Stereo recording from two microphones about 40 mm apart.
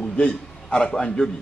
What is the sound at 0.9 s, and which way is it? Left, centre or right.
Speech, centre.